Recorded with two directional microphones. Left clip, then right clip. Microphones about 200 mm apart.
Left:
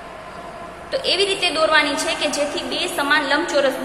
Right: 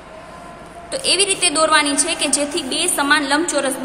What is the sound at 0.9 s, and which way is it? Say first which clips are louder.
A woman's voice: right 1 dB; 30° right (ahead or behind).